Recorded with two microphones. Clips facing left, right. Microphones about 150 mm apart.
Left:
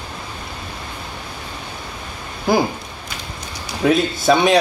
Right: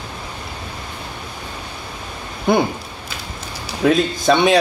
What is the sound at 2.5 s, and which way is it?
Speech, centre (ahead or behind).